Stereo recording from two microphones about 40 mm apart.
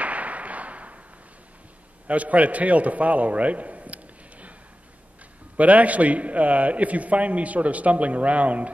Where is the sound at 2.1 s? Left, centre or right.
Right.